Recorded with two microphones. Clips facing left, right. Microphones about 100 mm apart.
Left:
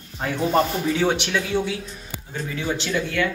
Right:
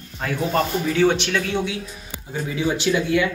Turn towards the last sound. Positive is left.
turn(degrees=-10)  # may be behind; listen again after turning